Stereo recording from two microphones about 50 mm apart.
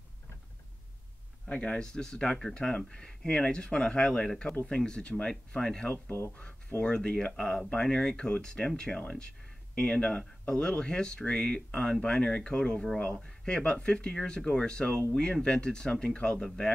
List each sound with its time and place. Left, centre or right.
1.5 s speech: centre
4.3 s speech: centre